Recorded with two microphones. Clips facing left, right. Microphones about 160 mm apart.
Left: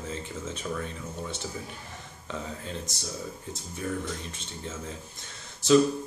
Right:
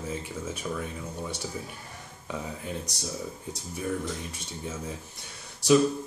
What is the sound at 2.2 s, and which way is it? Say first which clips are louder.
Speech: right 1 dB; 15° right (ahead or behind).